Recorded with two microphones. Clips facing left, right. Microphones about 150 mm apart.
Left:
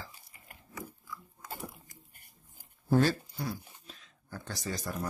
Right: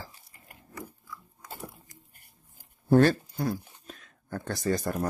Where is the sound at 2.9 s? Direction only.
60° right (ahead or behind).